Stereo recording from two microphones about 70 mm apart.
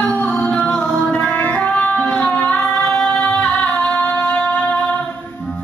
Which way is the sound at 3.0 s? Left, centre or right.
Centre.